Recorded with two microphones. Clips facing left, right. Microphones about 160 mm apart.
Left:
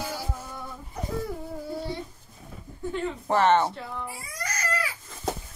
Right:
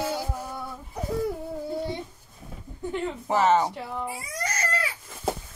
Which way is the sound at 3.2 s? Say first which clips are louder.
Even; 5° right (ahead or behind).